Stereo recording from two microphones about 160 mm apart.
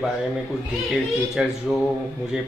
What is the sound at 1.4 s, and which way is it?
Speech, 5° right (ahead or behind).